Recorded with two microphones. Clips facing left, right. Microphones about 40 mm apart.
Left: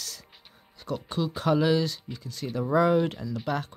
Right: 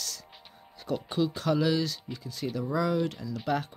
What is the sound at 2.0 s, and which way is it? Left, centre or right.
Speech, centre.